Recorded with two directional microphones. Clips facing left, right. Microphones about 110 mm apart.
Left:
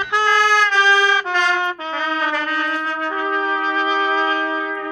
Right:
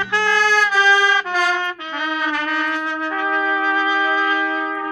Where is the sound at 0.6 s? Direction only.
5° right (ahead or behind).